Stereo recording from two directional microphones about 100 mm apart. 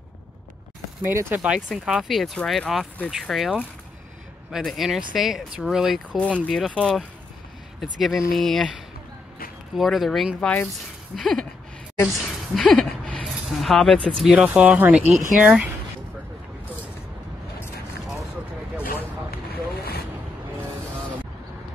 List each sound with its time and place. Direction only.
1.0 s speech: 20° right (ahead or behind)
1.7 s speech: centre (ahead or behind)
6.4 s speech: 10° left (ahead or behind)
7.8 s a woman's voice: centre (ahead or behind)
13.2 s a sound: centre (ahead or behind)
14.2 s speech: 10° right (ahead or behind)